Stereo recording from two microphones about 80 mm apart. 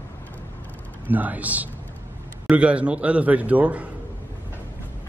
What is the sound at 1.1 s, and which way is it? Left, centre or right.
Speech, right.